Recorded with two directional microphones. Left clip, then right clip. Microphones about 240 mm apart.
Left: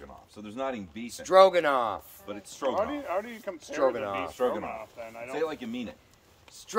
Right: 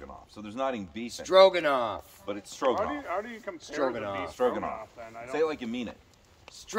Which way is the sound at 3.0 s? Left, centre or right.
Left.